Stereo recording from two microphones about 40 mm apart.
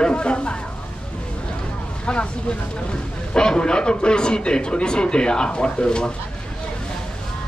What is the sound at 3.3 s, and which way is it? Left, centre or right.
Speech, left.